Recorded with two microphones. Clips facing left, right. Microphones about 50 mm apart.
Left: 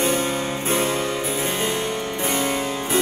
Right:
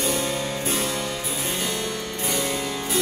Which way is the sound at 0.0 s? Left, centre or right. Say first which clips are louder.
Left 3 dB; left.